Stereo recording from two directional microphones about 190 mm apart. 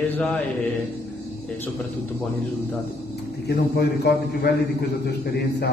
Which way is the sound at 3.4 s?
55° left (ahead or behind).